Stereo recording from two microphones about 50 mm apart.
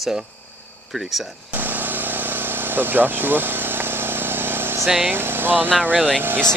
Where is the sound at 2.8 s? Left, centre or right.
Right.